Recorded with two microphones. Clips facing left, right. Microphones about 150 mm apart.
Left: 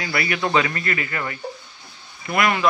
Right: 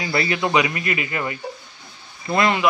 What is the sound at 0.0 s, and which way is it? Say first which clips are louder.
A man's voice: right 2 dB; 25° right (ahead or behind).